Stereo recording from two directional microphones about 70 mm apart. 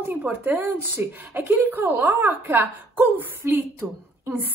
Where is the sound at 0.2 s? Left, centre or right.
Centre.